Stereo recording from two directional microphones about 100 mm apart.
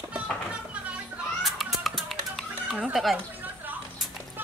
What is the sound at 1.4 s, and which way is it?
Music, centre (ahead or behind).